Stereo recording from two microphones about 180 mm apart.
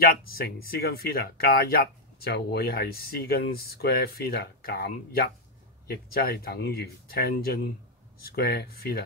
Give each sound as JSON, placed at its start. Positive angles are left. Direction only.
{"t": 0.0, "sound": "speech", "side_deg": 55}